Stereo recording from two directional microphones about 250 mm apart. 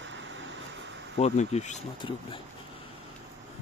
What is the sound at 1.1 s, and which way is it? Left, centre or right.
Speech, left.